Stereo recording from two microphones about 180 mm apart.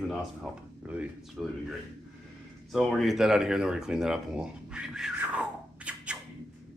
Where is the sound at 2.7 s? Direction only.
Centre (ahead or behind).